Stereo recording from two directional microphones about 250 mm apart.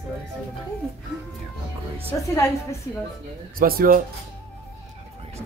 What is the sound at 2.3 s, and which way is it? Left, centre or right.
Speech, centre.